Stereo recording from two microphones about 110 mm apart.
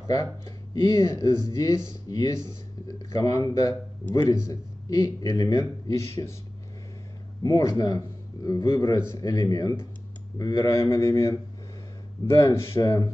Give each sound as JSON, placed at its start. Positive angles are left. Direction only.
{"t": 0.0, "sound": "speech", "side_deg": 30}
{"t": 0.5, "sound": "a sound", "side_deg": 40}
{"t": 0.9, "sound": "speech", "side_deg": 30}
{"t": 7.5, "sound": "speech", "side_deg": 40}
{"t": 10.7, "sound": "speech", "side_deg": 25}